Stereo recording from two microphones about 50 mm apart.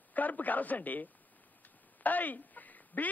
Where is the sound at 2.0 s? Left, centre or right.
Left.